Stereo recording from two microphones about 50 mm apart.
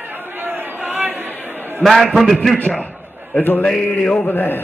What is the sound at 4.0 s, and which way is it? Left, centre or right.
Speech, centre.